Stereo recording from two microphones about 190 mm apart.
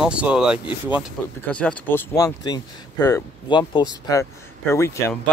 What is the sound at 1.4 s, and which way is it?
Speech, 5° left (ahead or behind).